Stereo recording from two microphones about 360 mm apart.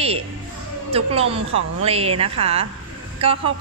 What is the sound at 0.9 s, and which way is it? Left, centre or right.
A woman's voice, centre.